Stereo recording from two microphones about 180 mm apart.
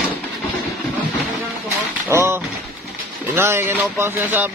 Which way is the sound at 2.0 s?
15° right (ahead or behind).